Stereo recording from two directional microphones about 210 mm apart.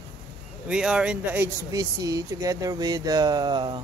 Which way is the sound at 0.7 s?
5° right (ahead or behind).